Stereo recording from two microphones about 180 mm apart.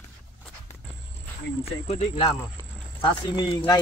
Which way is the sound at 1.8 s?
35° left (ahead or behind).